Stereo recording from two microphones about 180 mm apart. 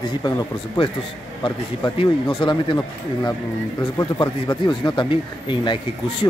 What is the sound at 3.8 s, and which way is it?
Speech, 20° left (ahead or behind).